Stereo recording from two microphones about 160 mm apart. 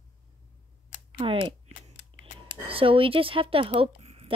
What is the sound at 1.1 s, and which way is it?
Speech, 35° right (ahead or behind).